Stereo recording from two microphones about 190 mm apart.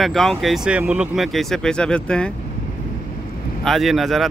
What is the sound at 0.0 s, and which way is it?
Speech, centre (ahead or behind).